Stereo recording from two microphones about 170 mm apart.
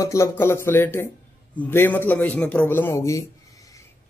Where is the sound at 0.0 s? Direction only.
15° left (ahead or behind).